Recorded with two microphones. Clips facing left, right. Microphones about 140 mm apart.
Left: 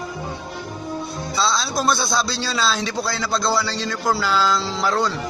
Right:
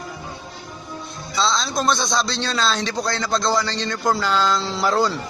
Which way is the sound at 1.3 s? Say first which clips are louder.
Right 1 dB; 5° left (ahead or behind).